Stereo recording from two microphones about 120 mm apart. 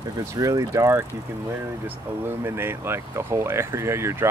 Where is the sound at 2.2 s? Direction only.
20° right (ahead or behind).